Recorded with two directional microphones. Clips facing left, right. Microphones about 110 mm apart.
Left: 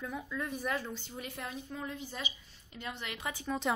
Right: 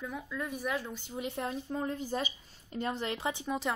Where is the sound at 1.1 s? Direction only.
30° right (ahead or behind).